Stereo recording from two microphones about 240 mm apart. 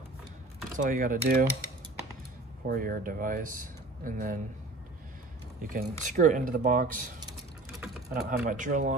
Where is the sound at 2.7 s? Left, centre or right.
Right.